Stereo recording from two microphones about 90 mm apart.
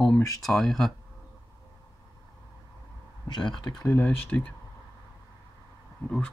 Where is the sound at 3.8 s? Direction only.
20° left (ahead or behind).